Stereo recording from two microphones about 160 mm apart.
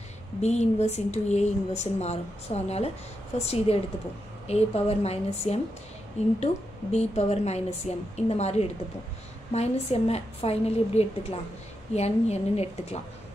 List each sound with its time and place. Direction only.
0.4 s a woman's voice: 45° left (ahead or behind)